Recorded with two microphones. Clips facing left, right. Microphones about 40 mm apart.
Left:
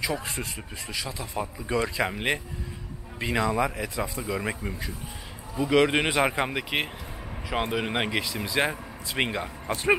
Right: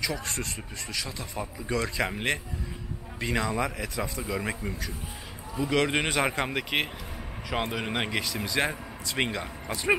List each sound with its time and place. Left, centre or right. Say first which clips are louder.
0.0 s speech: left 2 dB; left
0.9 s speech: left 3 dB; centre